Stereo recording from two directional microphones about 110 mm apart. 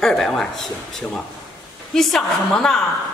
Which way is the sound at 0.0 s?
5° left (ahead or behind).